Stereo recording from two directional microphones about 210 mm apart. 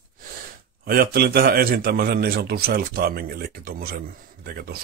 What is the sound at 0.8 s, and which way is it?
A man's voice, 45° right (ahead or behind).